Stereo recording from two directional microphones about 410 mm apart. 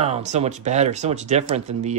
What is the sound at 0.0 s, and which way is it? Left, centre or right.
Speech, centre.